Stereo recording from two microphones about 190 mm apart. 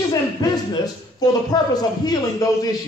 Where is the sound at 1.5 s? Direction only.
20° left (ahead or behind).